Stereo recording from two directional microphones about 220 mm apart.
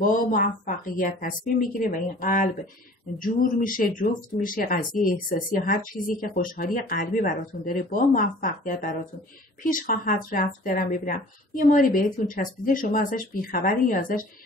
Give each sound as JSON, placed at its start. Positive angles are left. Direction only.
{"t": 0.0, "sound": "speech", "side_deg": 35}